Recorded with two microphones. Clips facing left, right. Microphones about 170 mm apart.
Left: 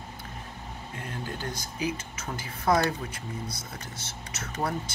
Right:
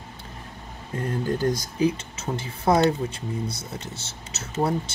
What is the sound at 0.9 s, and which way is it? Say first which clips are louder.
Speech: right 11 dB; 35° right (ahead or behind).